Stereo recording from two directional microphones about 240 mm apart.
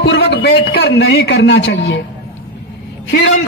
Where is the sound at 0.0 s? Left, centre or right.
Left.